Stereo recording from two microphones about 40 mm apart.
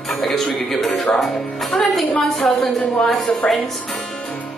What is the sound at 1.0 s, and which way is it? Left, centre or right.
Speech, centre.